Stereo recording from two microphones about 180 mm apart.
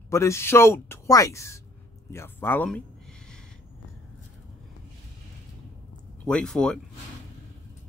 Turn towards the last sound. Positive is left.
turn(degrees=5)  # may be behind; listen again after turning